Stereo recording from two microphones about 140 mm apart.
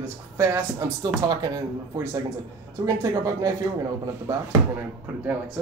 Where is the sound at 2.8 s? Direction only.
25° right (ahead or behind).